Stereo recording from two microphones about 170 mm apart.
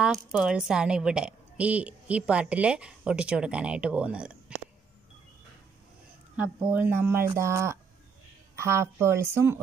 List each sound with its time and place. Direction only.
0.0 s a woman's voice: 5° right (ahead or behind)
6.3 s a woman's voice: 10° right (ahead or behind)